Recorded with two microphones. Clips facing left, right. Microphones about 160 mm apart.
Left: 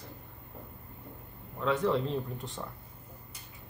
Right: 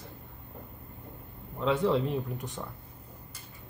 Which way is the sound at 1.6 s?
20° right (ahead or behind).